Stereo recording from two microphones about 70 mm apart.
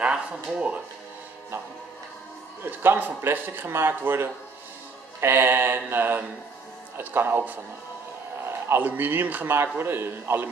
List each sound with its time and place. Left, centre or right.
0.0 s speech: centre
2.6 s a man's voice: right